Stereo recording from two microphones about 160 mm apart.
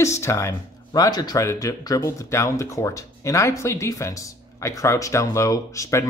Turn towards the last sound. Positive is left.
turn(degrees=20)  # may be behind; listen again after turning